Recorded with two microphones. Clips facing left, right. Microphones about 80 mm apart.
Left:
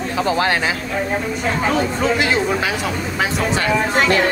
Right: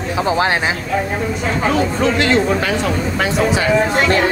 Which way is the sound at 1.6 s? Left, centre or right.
Centre.